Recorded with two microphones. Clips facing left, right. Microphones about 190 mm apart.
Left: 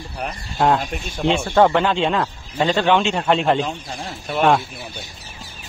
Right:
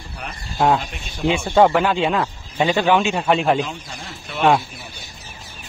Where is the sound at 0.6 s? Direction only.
Centre (ahead or behind).